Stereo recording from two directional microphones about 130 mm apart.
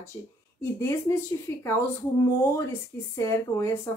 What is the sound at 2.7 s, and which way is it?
A woman's voice, 20° left (ahead or behind).